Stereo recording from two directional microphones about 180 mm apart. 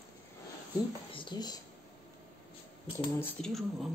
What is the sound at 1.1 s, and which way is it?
Speech, 25° left (ahead or behind).